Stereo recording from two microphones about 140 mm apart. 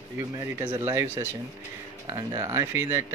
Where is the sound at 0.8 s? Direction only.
20° right (ahead or behind).